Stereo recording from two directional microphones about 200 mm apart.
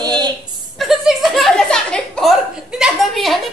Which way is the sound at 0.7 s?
Centre (ahead or behind).